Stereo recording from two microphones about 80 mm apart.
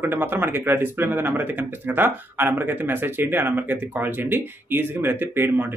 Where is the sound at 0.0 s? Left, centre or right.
Right.